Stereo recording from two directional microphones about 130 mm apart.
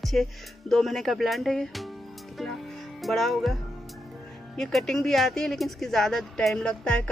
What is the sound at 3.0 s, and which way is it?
Music, centre (ahead or behind).